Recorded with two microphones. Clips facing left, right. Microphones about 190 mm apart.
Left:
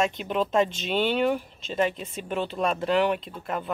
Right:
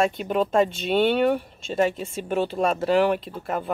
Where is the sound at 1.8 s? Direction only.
45° right (ahead or behind).